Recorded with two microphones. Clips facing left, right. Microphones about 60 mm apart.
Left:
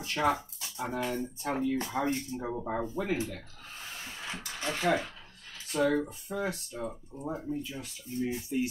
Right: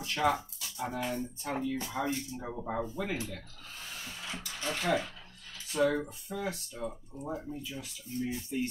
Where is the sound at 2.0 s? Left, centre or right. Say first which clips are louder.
Left 2 dB; left.